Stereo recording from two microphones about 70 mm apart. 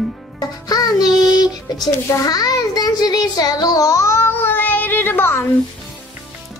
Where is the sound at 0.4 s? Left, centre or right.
Left.